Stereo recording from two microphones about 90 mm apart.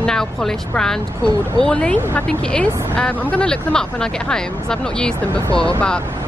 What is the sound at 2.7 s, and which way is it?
Speech, 30° right (ahead or behind).